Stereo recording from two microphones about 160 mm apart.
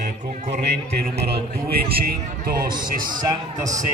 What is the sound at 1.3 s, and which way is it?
Speech, 75° right (ahead or behind).